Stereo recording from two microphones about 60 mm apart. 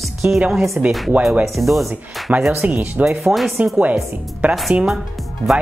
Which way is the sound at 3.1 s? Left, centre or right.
Centre.